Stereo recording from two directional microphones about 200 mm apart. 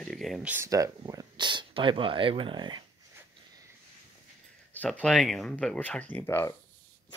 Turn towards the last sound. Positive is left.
turn(degrees=10)  # may be behind; listen again after turning